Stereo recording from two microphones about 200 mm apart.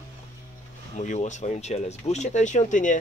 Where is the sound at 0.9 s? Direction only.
35° left (ahead or behind).